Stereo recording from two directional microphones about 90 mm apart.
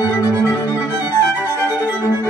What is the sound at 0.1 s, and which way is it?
Music, 40° left (ahead or behind).